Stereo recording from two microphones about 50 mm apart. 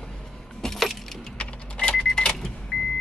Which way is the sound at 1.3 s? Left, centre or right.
Left.